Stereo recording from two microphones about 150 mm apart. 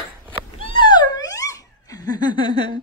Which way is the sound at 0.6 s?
35° left (ahead or behind).